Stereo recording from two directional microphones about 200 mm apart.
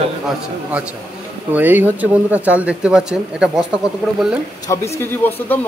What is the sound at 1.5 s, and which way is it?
Speech, 10° right (ahead or behind).